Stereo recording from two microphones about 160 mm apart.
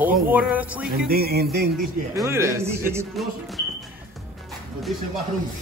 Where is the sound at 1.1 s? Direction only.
75° right (ahead or behind).